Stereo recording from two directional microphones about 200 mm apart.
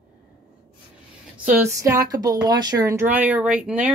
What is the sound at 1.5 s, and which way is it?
Speech, 15° right (ahead or behind).